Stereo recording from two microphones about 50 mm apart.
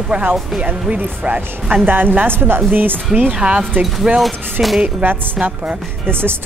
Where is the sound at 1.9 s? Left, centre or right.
Right.